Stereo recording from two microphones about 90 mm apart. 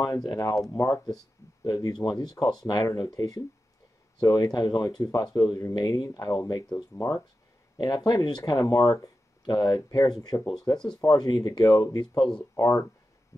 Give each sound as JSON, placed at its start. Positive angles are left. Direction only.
{"t": 0.0, "sound": "speech", "side_deg": 45}
{"t": 1.0, "sound": "speech", "side_deg": 45}
{"t": 7.7, "sound": "speech", "side_deg": 50}
{"t": 9.5, "sound": "speech", "side_deg": 50}
{"t": 10.4, "sound": "speech", "side_deg": 5}
{"t": 11.0, "sound": "speech", "side_deg": 45}
{"t": 12.5, "sound": "speech", "side_deg": 35}
{"t": 13.3, "sound": "a sound", "side_deg": 35}